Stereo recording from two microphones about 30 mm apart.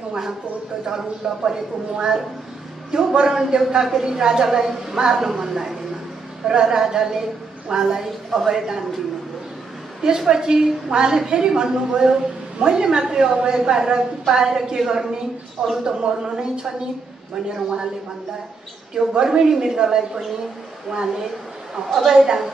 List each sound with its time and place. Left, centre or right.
0.8 s a woman's voice: right
5.3 s a woman's voice: centre
6.4 s a woman's voice: right
10.0 s a woman's voice: centre
15.6 s a woman's voice: right
19.2 s a woman's voice: centre
21.8 s a woman's voice: centre